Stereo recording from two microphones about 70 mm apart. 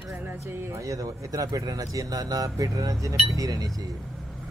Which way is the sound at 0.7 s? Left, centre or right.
Right.